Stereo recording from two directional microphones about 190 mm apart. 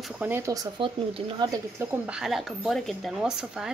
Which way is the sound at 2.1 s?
Centre (ahead or behind).